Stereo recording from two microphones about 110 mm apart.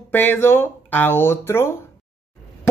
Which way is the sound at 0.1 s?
20° left (ahead or behind).